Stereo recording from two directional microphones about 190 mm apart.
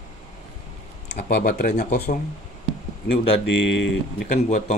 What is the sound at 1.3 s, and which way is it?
Speech, 50° left (ahead or behind).